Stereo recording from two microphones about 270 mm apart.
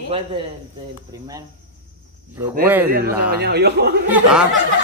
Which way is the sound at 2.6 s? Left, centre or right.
Centre.